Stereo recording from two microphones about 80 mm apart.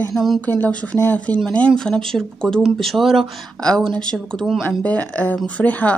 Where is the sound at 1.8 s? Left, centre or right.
Centre.